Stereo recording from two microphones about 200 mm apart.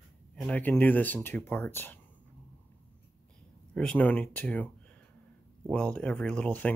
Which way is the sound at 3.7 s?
5° left (ahead or behind).